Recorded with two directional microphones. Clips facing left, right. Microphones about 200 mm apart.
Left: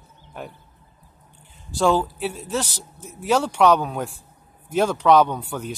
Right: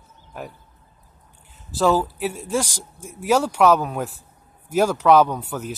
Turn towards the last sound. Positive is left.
turn(degrees=-5)  # may be behind; listen again after turning